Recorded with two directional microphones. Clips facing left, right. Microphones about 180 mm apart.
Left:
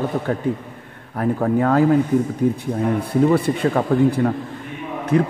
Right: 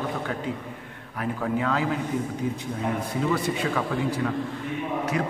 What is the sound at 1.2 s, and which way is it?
A man's voice, 45° left (ahead or behind).